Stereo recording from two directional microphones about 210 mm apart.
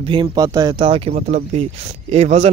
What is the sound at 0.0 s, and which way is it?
Speech, 25° right (ahead or behind).